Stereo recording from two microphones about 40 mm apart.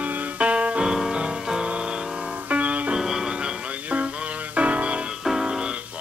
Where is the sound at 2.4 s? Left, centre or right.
Right.